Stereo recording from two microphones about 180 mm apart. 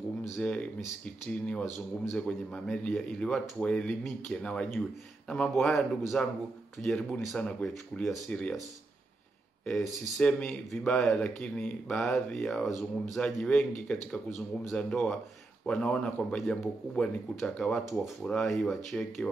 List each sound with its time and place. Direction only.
0.4 s speech: 5° left (ahead or behind)
10.1 s speech: 5° left (ahead or behind)